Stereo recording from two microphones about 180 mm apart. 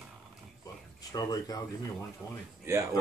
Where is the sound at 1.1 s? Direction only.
20° left (ahead or behind).